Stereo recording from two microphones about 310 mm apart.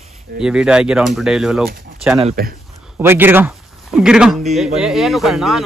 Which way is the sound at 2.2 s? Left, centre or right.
Right.